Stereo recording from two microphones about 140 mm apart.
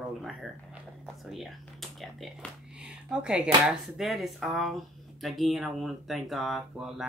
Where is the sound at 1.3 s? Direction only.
Centre (ahead or behind).